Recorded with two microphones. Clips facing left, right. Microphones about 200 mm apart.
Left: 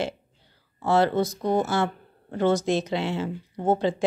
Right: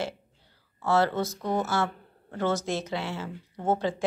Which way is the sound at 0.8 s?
15° left (ahead or behind).